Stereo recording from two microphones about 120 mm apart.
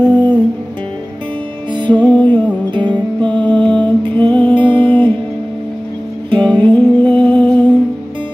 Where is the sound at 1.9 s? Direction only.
10° left (ahead or behind).